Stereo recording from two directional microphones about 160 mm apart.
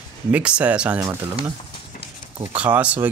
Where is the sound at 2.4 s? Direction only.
10° right (ahead or behind).